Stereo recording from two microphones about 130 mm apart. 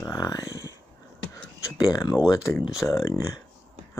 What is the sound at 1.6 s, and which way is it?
Speech, 30° left (ahead or behind).